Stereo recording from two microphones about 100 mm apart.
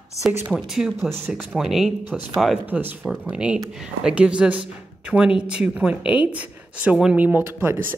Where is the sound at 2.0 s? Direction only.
15° right (ahead or behind).